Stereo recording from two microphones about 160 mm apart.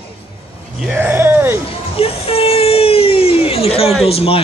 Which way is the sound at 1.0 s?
15° right (ahead or behind).